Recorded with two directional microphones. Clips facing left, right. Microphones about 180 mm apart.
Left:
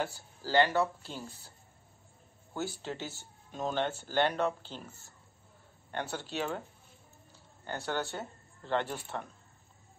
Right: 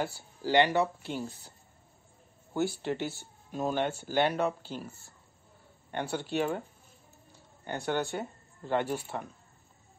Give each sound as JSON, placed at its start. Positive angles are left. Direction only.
{"t": 0.0, "sound": "speech", "side_deg": -20}
{"t": 2.5, "sound": "speech", "side_deg": -15}
{"t": 5.9, "sound": "speech", "side_deg": -10}
{"t": 7.6, "sound": "speech", "side_deg": -15}